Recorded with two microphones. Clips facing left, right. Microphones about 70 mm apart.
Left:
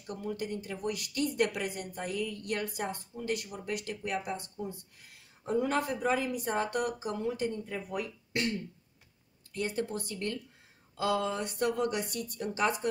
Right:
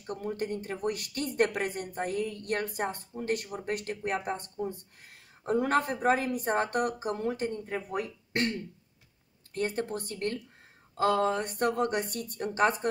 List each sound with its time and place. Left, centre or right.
0.0 s speech: right